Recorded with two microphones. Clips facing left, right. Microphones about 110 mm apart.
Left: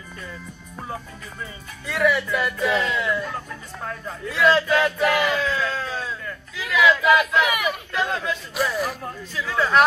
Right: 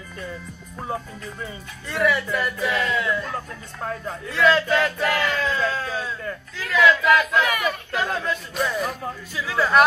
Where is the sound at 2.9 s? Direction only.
5° left (ahead or behind).